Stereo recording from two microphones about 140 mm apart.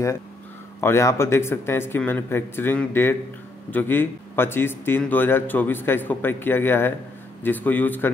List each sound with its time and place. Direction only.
0.7 s a man's voice: 20° left (ahead or behind)